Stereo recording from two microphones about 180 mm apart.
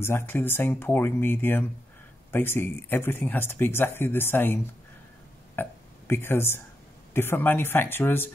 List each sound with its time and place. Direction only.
0.0 s speech: 10° left (ahead or behind)
5.6 s burping: 15° left (ahead or behind)
7.2 s speech: 10° left (ahead or behind)